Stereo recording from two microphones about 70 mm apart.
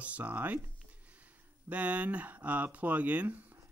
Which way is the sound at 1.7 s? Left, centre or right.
Centre.